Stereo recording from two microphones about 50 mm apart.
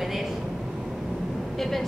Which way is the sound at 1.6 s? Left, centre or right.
Centre.